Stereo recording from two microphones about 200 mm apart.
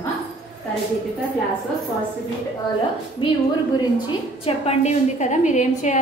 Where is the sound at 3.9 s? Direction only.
25° left (ahead or behind).